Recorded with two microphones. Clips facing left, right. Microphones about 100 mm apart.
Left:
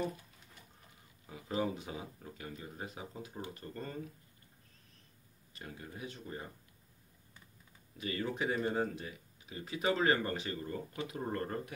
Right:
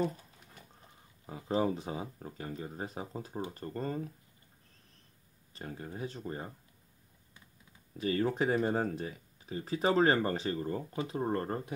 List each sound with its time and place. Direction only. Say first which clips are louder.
1.2 s speech: right 5 dB; 35° right (ahead or behind)
5.5 s speech: right 5 dB; 35° right (ahead or behind)
8.0 s speech: right 6 dB; 40° right (ahead or behind)